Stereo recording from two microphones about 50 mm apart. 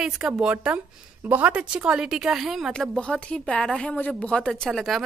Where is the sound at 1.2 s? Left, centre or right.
Right.